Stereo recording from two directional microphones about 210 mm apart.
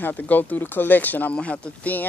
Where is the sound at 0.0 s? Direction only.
10° left (ahead or behind).